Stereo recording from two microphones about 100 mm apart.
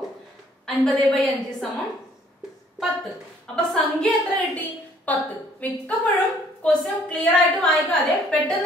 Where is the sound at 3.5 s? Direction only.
5° left (ahead or behind).